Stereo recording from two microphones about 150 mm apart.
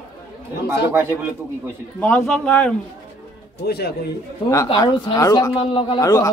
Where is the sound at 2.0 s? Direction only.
10° left (ahead or behind).